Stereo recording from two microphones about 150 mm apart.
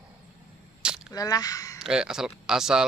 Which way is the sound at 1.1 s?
25° left (ahead or behind).